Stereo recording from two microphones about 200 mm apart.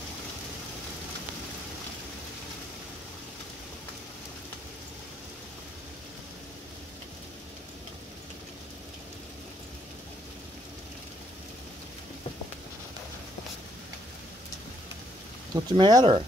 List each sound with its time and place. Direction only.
15.5 s speech: 20° right (ahead or behind)